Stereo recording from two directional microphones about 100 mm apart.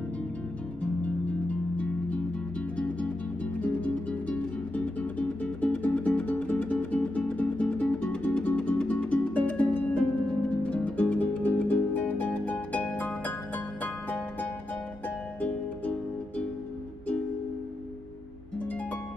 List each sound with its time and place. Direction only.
1.0 s music: 15° left (ahead or behind)
3.6 s music: 10° left (ahead or behind)